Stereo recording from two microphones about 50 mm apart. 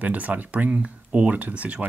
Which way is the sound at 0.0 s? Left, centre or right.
Right.